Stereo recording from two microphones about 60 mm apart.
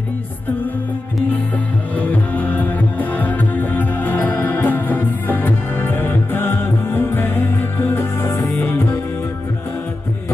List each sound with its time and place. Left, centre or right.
2.0 s music: left